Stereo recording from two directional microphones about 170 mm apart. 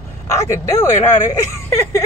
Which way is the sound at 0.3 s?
15° left (ahead or behind).